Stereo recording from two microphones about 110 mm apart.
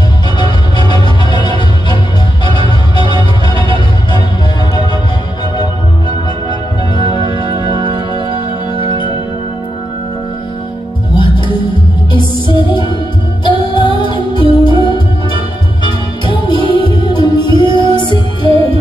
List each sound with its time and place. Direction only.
0.4 s music: 45° left (ahead or behind)
7.2 s music: 45° right (ahead or behind)
8.8 s music: 45° left (ahead or behind)
11.1 s music: 45° left (ahead or behind)